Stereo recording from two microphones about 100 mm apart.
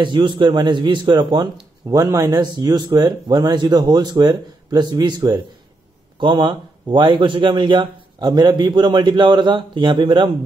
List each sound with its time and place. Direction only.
0.0 s speech: 50° right (ahead or behind)